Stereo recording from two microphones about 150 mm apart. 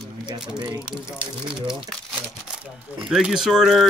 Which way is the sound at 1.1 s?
5° right (ahead or behind).